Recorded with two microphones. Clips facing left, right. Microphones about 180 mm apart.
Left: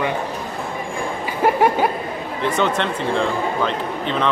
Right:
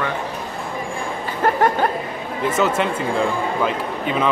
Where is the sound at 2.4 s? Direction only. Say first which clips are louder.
Right 1 dB; 5° right (ahead or behind).